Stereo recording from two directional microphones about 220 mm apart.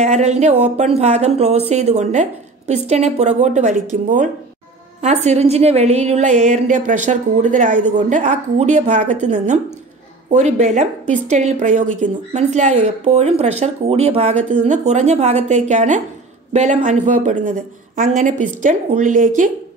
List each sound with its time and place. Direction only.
0.0 s a woman's voice: 30° right (ahead or behind)